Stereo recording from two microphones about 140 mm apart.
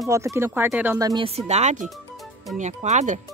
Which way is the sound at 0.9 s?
25° right (ahead or behind).